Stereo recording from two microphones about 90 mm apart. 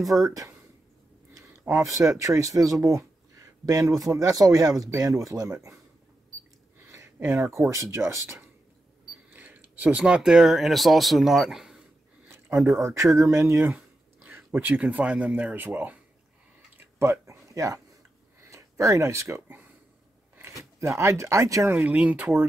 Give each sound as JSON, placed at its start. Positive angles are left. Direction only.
{"t": 0.3, "sound": "speech", "side_deg": -40}
{"t": 1.7, "sound": "speech", "side_deg": -35}
{"t": 6.9, "sound": "a sound", "side_deg": -35}
{"t": 7.7, "sound": "speech", "side_deg": -35}
{"t": 9.3, "sound": "speech", "side_deg": -20}
{"t": 12.8, "sound": "speech", "side_deg": -35}
{"t": 14.2, "sound": "a sound", "side_deg": -25}
{"t": 14.8, "sound": "speech", "side_deg": -15}
{"t": 16.7, "sound": "a sound", "side_deg": -25}
{"t": 18.4, "sound": "speech", "side_deg": -35}
{"t": 21.7, "sound": "speech", "side_deg": -15}